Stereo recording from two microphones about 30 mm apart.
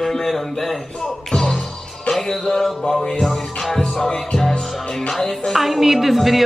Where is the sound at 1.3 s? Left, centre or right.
Left.